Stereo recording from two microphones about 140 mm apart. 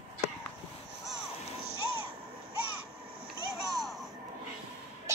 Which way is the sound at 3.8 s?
Centre (ahead or behind).